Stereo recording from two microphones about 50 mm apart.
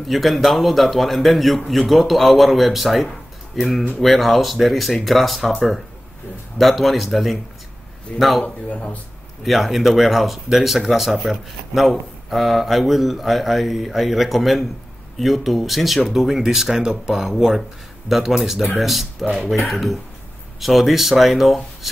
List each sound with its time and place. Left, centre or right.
0.0 s speech: centre
6.6 s speech: centre
8.4 s speech: left
9.4 s speech: centre